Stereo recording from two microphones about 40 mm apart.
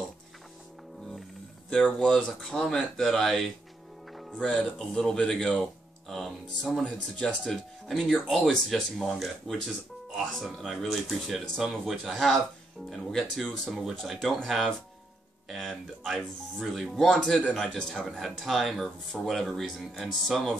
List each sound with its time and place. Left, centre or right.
2.0 s speech: centre
4.4 s speech: centre
13.7 s speech: centre
15.6 s speech: centre
17.0 s a man's voice: centre
17.9 s speech: centre